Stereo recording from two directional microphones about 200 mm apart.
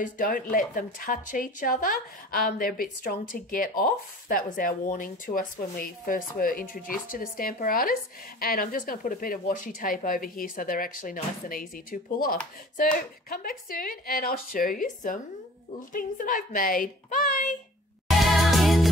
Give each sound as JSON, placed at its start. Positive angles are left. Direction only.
{"t": 0.0, "sound": "speech", "side_deg": 45}
{"t": 18.2, "sound": "music", "side_deg": 0}